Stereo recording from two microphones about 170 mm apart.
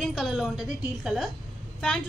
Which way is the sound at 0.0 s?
Centre (ahead or behind).